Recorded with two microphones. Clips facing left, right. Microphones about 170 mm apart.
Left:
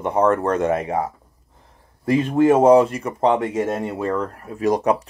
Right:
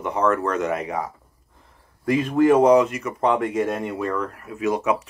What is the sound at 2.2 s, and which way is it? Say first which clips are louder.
Speech: left 1 dB; 25° left (ahead or behind).